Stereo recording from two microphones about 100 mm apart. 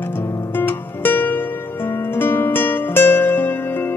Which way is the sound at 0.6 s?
20° left (ahead or behind).